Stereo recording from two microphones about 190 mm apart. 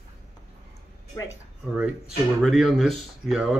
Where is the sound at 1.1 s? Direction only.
15° left (ahead or behind).